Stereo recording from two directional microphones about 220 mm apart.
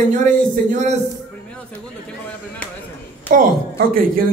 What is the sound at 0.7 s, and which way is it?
Speech, 35° right (ahead or behind).